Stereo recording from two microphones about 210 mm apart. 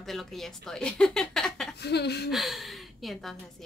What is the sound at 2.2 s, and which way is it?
A woman's voice, centre (ahead or behind).